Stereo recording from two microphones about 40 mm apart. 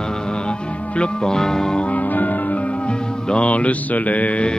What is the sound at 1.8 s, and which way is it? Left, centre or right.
Music, left.